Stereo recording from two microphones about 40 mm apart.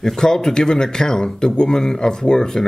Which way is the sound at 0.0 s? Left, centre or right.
Centre.